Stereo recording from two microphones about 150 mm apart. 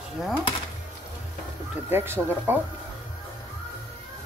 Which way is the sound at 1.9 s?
15° right (ahead or behind).